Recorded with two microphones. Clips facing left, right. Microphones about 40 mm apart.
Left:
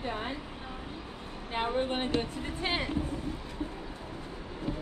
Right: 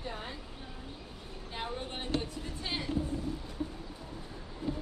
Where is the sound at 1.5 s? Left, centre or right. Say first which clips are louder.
Left 9 dB; left.